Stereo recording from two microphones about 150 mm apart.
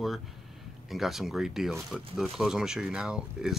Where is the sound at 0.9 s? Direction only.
Centre (ahead or behind).